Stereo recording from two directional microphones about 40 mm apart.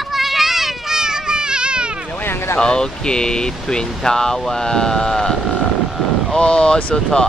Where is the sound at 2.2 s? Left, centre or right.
Left.